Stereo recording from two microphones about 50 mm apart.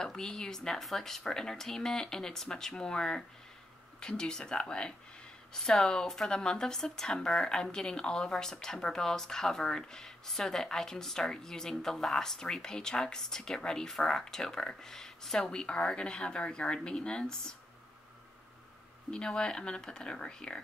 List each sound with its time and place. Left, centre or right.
0.0 s speech: centre
19.0 s speech: centre